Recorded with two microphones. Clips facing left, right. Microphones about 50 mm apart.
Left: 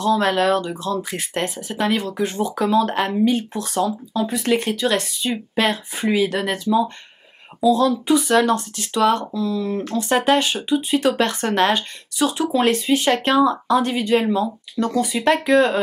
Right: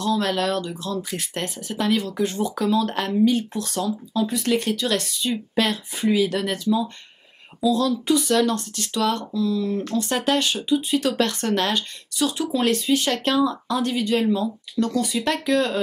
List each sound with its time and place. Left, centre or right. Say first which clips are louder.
0.0 s speech: left 5 dB; centre